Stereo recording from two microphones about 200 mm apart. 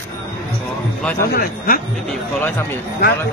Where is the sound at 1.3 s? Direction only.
45° left (ahead or behind).